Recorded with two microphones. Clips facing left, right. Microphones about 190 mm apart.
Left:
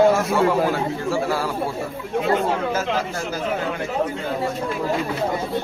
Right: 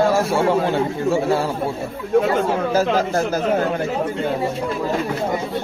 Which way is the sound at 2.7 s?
45° right (ahead or behind).